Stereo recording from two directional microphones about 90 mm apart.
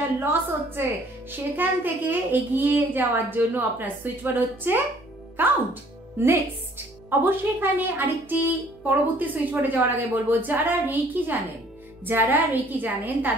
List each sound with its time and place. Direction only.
0.2 s a child's voice: 25° right (ahead or behind)